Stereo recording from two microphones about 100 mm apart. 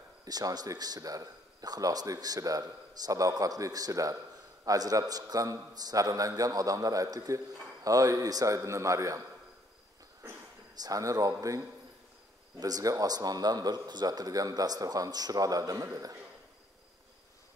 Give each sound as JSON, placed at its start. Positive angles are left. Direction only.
{"t": 0.2, "sound": "a man's voice", "side_deg": -40}
{"t": 10.8, "sound": "a man's voice", "side_deg": -35}